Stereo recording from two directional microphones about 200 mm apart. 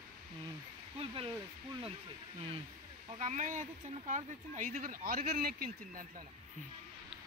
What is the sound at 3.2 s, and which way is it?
Speech, 35° right (ahead or behind).